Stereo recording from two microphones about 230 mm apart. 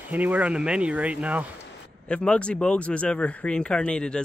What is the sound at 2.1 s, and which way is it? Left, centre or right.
Speech, centre.